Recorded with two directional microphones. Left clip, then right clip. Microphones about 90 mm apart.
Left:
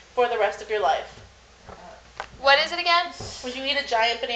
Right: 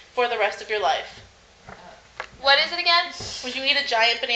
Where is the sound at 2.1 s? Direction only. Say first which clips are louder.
Even; 45° left (ahead or behind).